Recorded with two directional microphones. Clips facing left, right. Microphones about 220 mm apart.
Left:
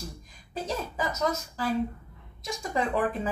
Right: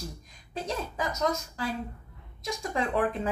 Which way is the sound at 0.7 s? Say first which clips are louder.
Left 1 dB; 5° left (ahead or behind).